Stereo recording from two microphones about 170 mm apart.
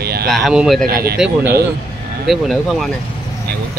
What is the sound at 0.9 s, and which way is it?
Speech, 65° right (ahead or behind).